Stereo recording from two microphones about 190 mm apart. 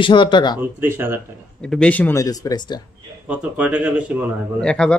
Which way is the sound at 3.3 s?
5° right (ahead or behind).